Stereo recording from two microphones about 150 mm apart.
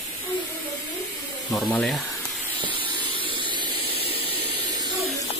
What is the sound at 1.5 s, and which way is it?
Speech, 5° left (ahead or behind).